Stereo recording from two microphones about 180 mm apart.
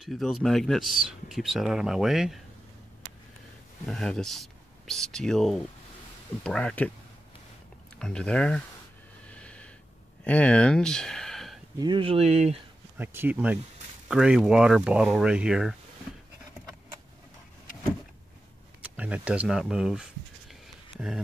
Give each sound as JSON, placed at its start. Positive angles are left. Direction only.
{"t": 0.0, "sound": "speech", "side_deg": 0}
{"t": 3.8, "sound": "speech", "side_deg": 5}
{"t": 8.0, "sound": "speech", "side_deg": 5}
{"t": 9.3, "sound": "snort", "side_deg": 5}
{"t": 10.2, "sound": "speech", "side_deg": 5}
{"t": 11.8, "sound": "speech", "side_deg": -30}
{"t": 12.9, "sound": "speech", "side_deg": -10}
{"t": 18.9, "sound": "speech", "side_deg": -5}